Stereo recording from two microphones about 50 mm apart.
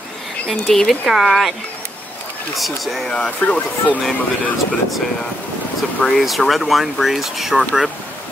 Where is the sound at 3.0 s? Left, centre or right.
Centre.